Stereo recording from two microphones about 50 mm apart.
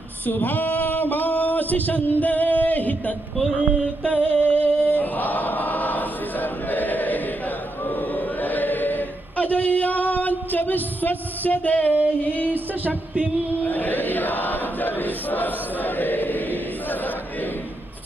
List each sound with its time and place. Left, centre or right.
0.3 s a sound: left
4.0 s choir: left
7.9 s chant: left
12.3 s music: left
13.7 s chant: left